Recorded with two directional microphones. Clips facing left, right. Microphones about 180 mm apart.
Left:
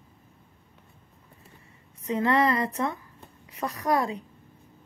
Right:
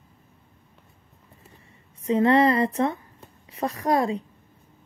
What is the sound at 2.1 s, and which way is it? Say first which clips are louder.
Speech: right 5 dB; 30° right (ahead or behind).